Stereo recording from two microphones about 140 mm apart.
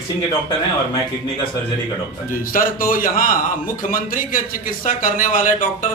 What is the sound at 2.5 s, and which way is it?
A man's voice, 80° left.